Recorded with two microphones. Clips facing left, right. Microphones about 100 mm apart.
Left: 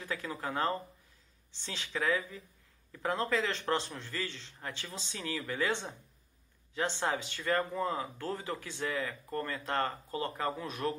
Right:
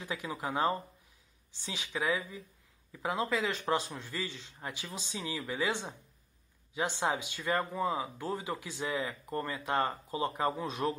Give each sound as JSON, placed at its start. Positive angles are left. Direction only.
{"t": 0.0, "sound": "speech", "side_deg": -15}
{"t": 7.0, "sound": "speech", "side_deg": -15}